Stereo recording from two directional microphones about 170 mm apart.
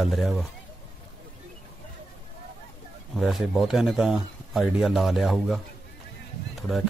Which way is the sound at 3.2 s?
Centre (ahead or behind).